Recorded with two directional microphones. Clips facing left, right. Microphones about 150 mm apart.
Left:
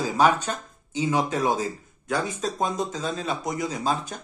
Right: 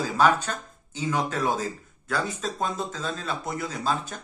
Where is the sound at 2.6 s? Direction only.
40° left (ahead or behind).